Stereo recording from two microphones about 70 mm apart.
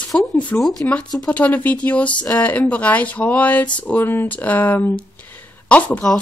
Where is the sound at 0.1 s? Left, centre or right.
Centre.